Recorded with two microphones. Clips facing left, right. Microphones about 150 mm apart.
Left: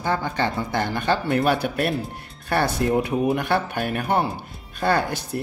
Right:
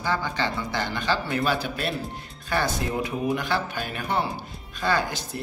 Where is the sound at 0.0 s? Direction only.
50° left (ahead or behind).